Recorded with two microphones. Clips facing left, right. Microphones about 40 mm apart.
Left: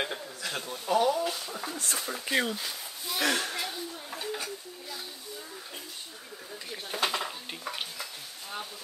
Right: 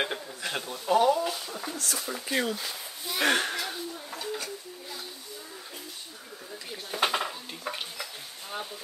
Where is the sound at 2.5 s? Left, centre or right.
Centre.